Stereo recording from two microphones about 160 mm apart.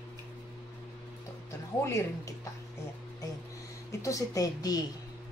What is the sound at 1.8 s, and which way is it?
Speech, 20° left (ahead or behind).